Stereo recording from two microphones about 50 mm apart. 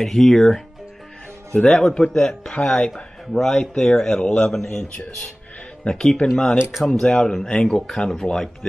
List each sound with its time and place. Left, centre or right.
0.0 s a man's voice: centre
4.5 s speech: centre